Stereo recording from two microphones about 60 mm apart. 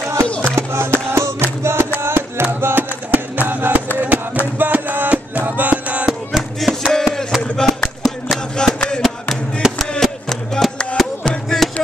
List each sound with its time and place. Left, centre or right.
0.3 s music: centre
0.6 s music: right
6.3 s music: centre
7.4 s a sound: centre
9.6 s chop: centre
10.3 s music: centre